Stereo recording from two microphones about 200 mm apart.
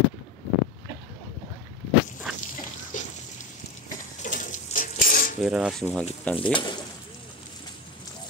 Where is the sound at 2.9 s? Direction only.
40° left (ahead or behind).